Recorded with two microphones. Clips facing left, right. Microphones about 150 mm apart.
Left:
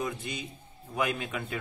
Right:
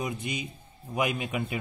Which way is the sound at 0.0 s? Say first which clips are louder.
Right 2 dB; 15° right (ahead or behind).